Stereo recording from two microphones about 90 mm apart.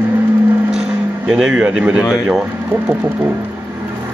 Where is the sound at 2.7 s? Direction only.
20° right (ahead or behind).